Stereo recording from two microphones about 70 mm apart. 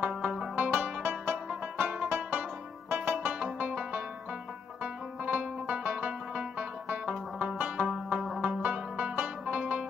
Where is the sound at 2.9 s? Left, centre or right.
Right.